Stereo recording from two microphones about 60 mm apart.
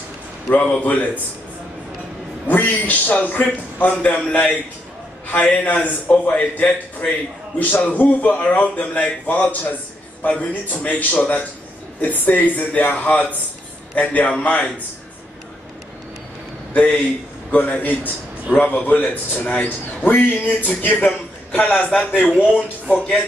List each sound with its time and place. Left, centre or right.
0.6 s a man's voice: left
2.4 s a man's voice: left
5.4 s a man's voice: centre
7.5 s a man's voice: left
16.7 s a man's voice: left